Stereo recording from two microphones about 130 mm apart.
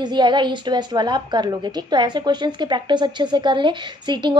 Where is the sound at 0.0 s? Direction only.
35° right (ahead or behind).